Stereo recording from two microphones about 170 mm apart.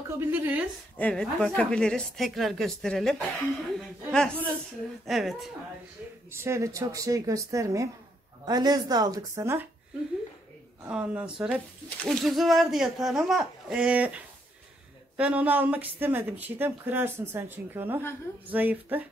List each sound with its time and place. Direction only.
0.1 s speech: 10° right (ahead or behind)
0.9 s a woman's voice: 5° left (ahead or behind)
6.3 s speech: 15° right (ahead or behind)
10.9 s a woman's voice: 5° right (ahead or behind)